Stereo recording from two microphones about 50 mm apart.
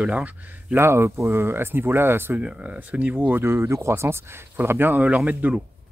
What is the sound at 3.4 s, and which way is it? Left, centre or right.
Speech, right.